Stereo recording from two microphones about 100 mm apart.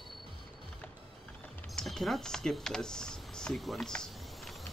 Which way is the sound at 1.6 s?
Centre (ahead or behind).